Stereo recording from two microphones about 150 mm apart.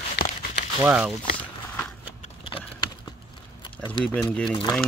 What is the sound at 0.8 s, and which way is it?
Speech, 10° right (ahead or behind).